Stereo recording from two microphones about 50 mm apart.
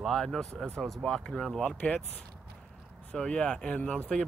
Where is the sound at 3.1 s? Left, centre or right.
Centre.